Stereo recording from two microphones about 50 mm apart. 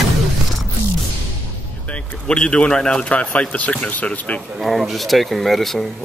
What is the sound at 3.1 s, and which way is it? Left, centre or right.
Speech, left.